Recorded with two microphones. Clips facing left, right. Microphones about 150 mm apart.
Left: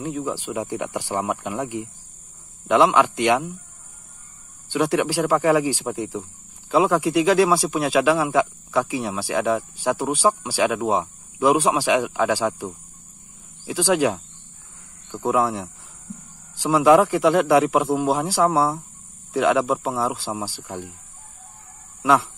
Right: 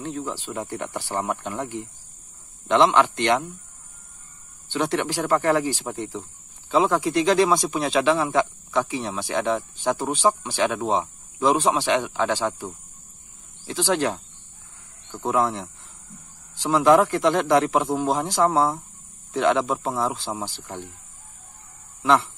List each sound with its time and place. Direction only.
0.0 s speech: 10° left (ahead or behind)
4.6 s speech: 10° left (ahead or behind)
22.0 s speech: 10° left (ahead or behind)